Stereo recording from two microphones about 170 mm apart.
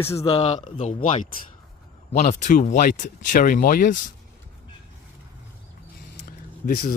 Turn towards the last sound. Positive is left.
turn(degrees=60)  # may be behind; listen again after turning